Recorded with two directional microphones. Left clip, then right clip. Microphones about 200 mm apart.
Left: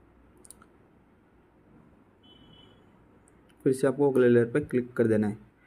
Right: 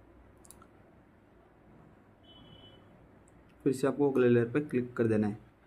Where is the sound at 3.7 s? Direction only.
15° left (ahead or behind).